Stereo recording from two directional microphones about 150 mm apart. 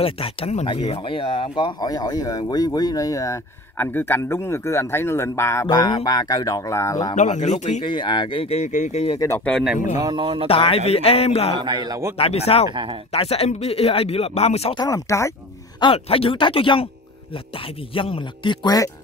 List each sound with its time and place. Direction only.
0.0 s speech: 40° left (ahead or behind); by 5.7 s 20° left (ahead or behind)
5.7 s speech: 30° left (ahead or behind)
7.2 s speech: 50° left (ahead or behind)
7.8 s speech: 30° left (ahead or behind)
9.4 s speech: 5° left (ahead or behind)
9.9 s speech: 30° right (ahead or behind)
10.5 s speech: 40° left (ahead or behind)
11.5 s a man's voice: 30° right (ahead or behind)
12.2 s speech: 40° left (ahead or behind)
14.8 s speech: 20° left (ahead or behind)
15.8 s speech: 35° left (ahead or behind)
17.9 s speech: 35° left (ahead or behind)